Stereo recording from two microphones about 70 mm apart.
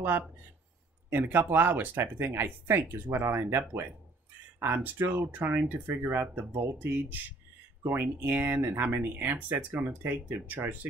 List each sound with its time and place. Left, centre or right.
1.1 s speech: right